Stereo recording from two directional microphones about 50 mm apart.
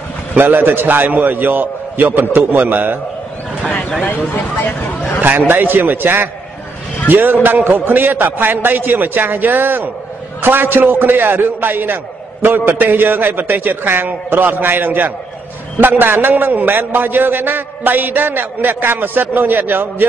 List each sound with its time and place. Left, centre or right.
0.4 s a man's voice: right
4.6 s speech: left
5.5 s a man's voice: right